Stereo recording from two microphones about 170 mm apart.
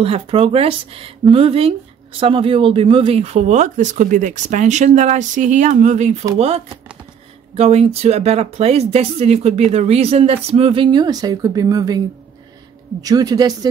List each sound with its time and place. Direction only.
0.0 s speech: 35° right (ahead or behind)
13.0 s speech: 20° right (ahead or behind)